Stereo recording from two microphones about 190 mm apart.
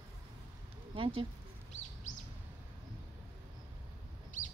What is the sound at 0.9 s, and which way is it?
Speech, 30° right (ahead or behind).